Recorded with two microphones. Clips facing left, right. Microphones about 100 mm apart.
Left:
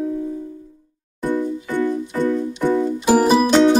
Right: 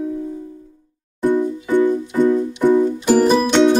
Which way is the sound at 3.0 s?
10° left (ahead or behind).